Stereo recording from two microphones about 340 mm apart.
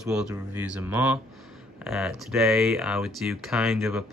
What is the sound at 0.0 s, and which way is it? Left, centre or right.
Speech, centre.